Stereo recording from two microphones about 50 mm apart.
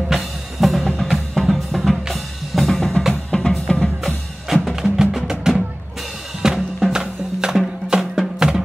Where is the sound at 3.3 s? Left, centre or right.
Centre.